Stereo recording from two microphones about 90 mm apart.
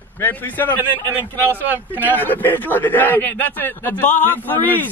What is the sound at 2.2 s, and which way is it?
A man's voice, 20° left (ahead or behind).